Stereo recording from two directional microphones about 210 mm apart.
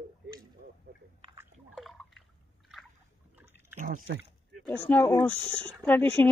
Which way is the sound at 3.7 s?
40° right (ahead or behind).